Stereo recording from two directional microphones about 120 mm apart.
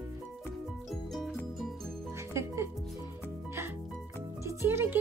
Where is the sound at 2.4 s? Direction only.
20° right (ahead or behind).